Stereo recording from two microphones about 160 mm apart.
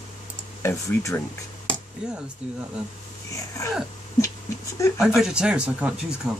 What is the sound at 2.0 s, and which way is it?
Speech, 5° right (ahead or behind).